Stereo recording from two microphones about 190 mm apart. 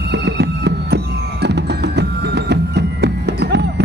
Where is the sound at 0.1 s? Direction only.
65° right (ahead or behind).